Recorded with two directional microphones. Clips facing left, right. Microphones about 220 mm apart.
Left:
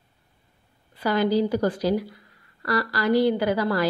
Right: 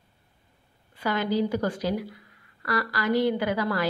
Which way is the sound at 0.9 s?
35° left (ahead or behind).